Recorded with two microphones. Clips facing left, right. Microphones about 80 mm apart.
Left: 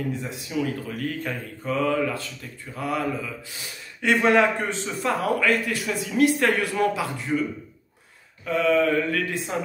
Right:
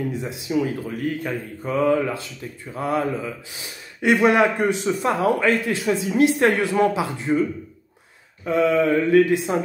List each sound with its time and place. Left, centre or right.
0.1 s speech: centre
8.5 s speech: right